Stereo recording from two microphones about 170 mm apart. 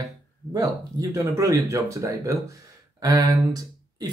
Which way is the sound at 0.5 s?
20° right (ahead or behind).